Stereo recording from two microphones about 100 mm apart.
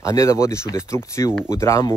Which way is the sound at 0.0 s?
30° left (ahead or behind).